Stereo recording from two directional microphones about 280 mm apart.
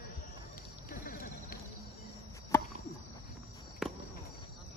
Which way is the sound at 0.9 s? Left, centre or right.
Left.